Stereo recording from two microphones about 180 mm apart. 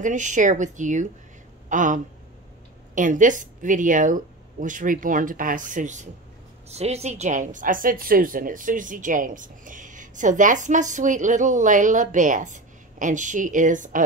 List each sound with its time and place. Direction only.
0.0 s a woman's voice: 45° right (ahead or behind)
1.7 s a sound: 45° right (ahead or behind)
2.9 s a woman's voice: 45° right (ahead or behind)